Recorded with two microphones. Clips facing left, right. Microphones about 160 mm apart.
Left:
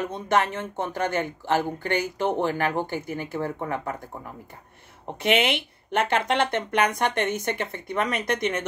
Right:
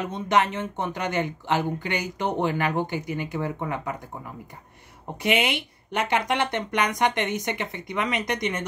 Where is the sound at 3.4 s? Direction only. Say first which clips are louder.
Even; 45° left (ahead or behind).